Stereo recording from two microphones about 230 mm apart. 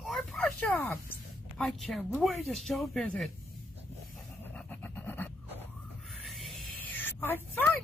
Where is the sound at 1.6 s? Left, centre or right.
Centre.